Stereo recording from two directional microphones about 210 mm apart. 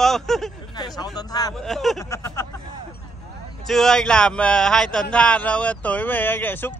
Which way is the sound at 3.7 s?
Centre (ahead or behind).